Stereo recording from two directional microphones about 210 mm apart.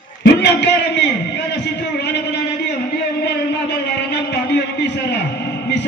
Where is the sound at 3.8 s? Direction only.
55° left (ahead or behind).